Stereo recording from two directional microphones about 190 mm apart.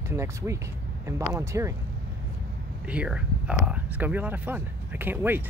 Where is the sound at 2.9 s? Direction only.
5° right (ahead or behind).